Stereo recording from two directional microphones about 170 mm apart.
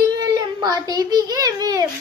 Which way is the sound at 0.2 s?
25° right (ahead or behind).